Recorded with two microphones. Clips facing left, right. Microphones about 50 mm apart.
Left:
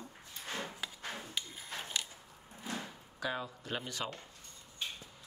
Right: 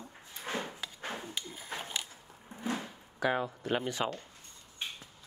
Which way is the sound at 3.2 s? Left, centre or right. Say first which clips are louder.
Right 7 dB; right.